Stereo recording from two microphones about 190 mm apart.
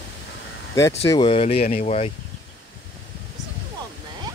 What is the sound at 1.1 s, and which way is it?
Speech, 25° left (ahead or behind).